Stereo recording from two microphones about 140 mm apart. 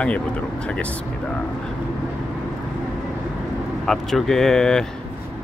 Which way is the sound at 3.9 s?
Centre (ahead or behind).